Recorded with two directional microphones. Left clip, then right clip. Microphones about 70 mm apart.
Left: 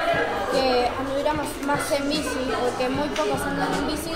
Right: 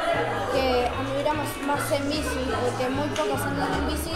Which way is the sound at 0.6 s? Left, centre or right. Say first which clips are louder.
Left 2 dB; right.